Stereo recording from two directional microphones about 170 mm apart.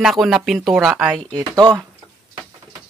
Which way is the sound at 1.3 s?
25° right (ahead or behind).